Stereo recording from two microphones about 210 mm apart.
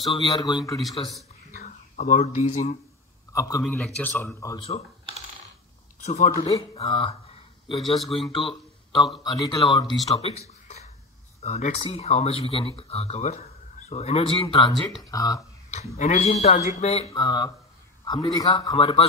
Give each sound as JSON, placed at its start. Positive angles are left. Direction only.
{"t": 0.1, "sound": "speech", "side_deg": 20}
{"t": 1.5, "sound": "speech", "side_deg": 35}
{"t": 3.3, "sound": "speech", "side_deg": 15}
{"t": 3.6, "sound": "speech", "side_deg": 5}
{"t": 4.6, "sound": "typing", "side_deg": 30}
{"t": 5.9, "sound": "speech", "side_deg": 35}
{"t": 7.9, "sound": "speech", "side_deg": 0}
{"t": 9.2, "sound": "speech", "side_deg": 20}
{"t": 10.0, "sound": "a sound", "side_deg": 30}
{"t": 11.4, "sound": "speech", "side_deg": 30}
{"t": 15.7, "sound": "speech", "side_deg": 30}
{"t": 17.1, "sound": "speech", "side_deg": 20}